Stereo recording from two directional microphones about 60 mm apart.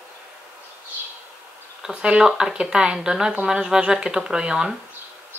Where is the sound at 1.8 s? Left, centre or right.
Centre.